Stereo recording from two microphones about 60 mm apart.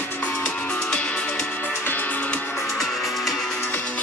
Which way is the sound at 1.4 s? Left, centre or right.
Left.